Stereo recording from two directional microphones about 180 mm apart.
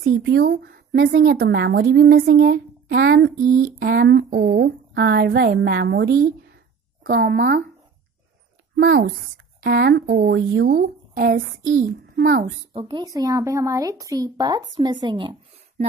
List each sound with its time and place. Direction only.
0.0 s speech: 60° right (ahead or behind)
8.8 s speech: 55° right (ahead or behind)
12.7 s speech: 25° right (ahead or behind)